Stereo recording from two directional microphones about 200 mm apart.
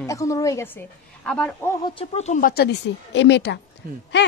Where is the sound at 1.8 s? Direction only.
30° left (ahead or behind); by 3.6 s 60° left (ahead or behind).